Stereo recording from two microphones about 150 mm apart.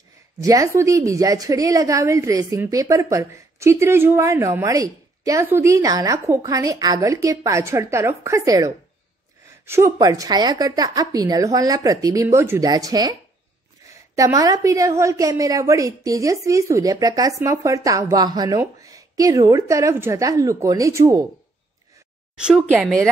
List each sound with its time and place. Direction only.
0.4 s a woman's voice: 20° right (ahead or behind)
14.1 s a woman's voice: 20° right (ahead or behind)
22.3 s a woman's voice: 5° right (ahead or behind)